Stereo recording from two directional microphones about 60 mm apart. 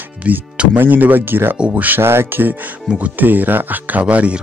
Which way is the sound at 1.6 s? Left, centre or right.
Right.